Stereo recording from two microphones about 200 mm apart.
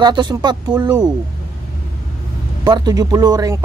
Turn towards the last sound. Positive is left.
turn(degrees=-20)  # may be behind; listen again after turning